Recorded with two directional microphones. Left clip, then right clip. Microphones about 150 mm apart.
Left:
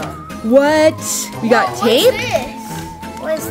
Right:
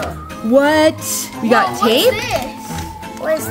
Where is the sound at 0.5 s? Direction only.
10° left (ahead or behind).